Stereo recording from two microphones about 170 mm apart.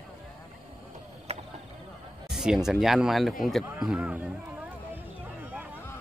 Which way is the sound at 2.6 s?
Centre (ahead or behind).